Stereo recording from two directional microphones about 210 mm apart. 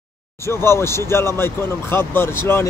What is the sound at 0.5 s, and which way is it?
Speech, 10° left (ahead or behind).